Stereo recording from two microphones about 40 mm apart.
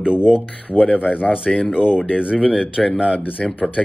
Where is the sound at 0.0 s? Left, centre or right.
Right.